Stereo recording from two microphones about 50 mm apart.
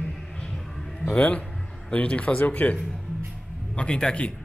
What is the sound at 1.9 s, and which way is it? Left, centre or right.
Speech, left.